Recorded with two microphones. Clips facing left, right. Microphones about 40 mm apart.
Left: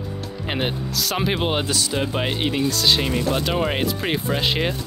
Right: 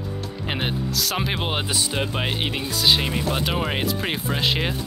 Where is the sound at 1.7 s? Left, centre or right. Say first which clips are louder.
Left 2 dB; right.